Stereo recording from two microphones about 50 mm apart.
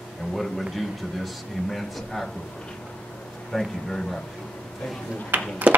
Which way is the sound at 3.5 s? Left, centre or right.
Centre.